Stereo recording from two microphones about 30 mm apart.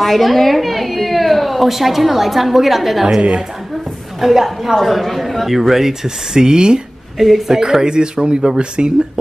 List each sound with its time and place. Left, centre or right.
0.0 s a woman's voice: centre
3.2 s a woman's voice: right
4.2 s a woman's voice: centre
4.7 s a woman's voice: centre
6.3 s speech: right
7.2 s a woman's voice: centre
7.4 s speech: centre; by 8.9 s right